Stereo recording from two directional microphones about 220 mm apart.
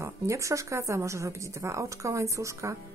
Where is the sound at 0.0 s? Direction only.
15° right (ahead or behind).